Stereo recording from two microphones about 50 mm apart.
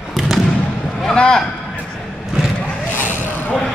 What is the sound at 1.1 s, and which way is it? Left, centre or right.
Speech, centre.